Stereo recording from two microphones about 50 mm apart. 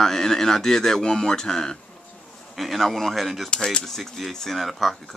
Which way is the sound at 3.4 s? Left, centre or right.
Centre.